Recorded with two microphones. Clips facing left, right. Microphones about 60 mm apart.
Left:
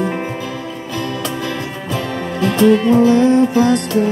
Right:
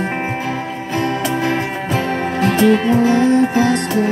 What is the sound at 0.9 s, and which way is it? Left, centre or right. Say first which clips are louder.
Music: right 4 dB; right.